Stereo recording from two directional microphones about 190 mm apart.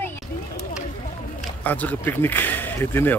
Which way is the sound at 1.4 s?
10° left (ahead or behind).